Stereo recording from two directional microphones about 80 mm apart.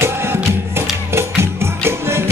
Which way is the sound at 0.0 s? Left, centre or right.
Right.